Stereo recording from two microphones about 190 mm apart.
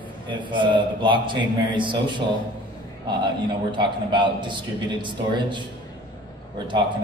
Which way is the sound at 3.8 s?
25° right (ahead or behind).